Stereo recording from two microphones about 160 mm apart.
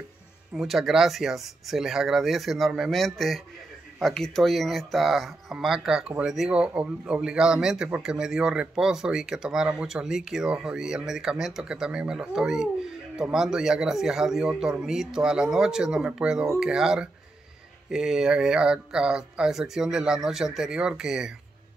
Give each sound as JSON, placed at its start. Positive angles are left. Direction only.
{"t": 0.6, "sound": "speech", "side_deg": 0}